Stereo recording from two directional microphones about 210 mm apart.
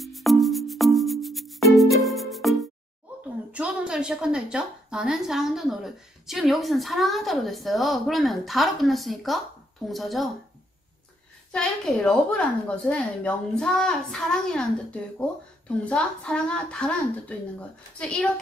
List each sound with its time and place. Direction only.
0.0 s music: centre (ahead or behind)
3.5 s a woman's voice: 5° right (ahead or behind)
11.5 s a woman's voice: 5° left (ahead or behind)